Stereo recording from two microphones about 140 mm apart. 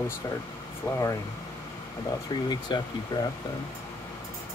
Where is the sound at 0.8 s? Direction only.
20° left (ahead or behind).